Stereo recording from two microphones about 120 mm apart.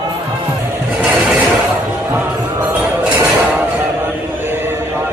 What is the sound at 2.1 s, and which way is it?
Basketball bounce, 15° right (ahead or behind).